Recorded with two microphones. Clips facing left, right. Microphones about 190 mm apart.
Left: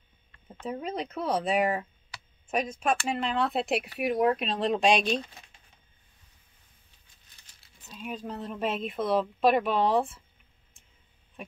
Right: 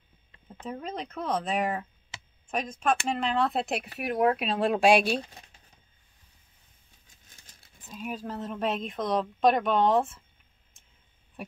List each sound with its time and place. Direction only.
0.7 s speech: 5° left (ahead or behind)
2.1 s computer keyboard: 25° right (ahead or behind)
2.5 s speech: centre (ahead or behind)
8.0 s speech: 5° right (ahead or behind)